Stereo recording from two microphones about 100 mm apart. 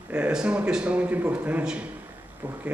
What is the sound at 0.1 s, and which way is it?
A man's voice, 10° right (ahead or behind).